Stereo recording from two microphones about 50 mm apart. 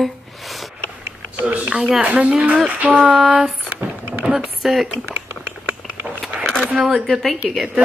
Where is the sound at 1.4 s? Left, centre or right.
Right.